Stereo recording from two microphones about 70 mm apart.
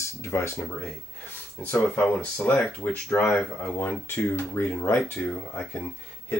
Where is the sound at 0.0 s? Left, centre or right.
Left.